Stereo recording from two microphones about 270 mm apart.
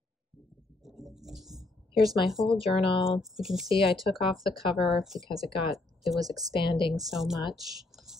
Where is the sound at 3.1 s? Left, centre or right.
Centre.